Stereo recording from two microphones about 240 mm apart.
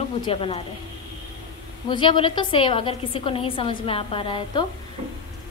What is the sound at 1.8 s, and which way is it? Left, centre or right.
A woman's voice, centre.